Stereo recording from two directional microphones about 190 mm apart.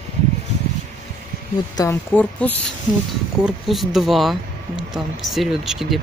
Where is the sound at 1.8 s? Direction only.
15° left (ahead or behind).